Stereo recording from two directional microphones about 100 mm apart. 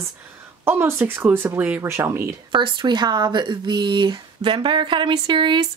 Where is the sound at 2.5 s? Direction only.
55° right (ahead or behind).